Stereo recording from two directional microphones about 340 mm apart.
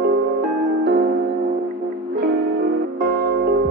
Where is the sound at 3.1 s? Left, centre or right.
Right.